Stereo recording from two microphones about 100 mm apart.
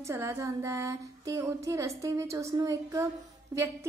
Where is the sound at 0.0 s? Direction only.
25° right (ahead or behind).